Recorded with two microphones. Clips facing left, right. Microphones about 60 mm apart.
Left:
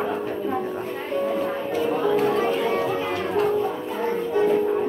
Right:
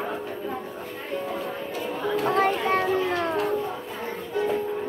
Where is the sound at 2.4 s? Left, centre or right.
Right.